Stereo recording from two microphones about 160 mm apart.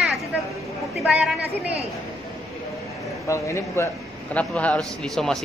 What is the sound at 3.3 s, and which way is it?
A man's voice, 20° left (ahead or behind).